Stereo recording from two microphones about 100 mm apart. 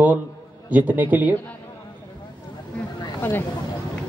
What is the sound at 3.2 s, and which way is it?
Speech, 20° left (ahead or behind).